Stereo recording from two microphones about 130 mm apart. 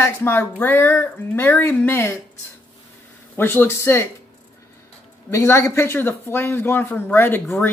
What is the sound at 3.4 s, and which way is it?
Speech, 15° left (ahead or behind).